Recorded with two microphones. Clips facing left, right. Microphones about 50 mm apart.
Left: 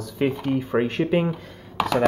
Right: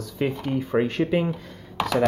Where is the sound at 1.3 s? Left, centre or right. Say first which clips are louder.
Even; centre.